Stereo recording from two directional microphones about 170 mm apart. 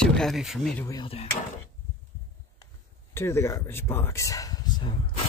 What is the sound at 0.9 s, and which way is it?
Speech, 30° left (ahead or behind).